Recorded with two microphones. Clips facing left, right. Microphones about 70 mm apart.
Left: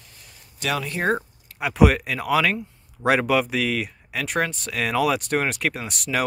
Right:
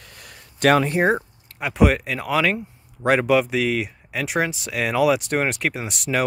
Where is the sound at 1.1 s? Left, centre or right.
Centre.